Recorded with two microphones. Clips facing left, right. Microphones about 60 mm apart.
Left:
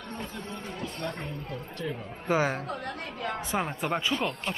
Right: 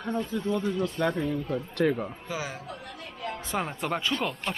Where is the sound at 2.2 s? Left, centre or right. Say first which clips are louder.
Left 8 dB; left.